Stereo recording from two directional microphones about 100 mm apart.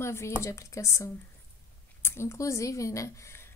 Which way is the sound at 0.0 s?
25° left (ahead or behind).